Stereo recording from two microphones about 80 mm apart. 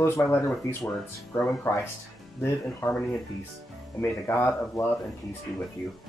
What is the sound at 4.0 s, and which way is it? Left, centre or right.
Speech, left.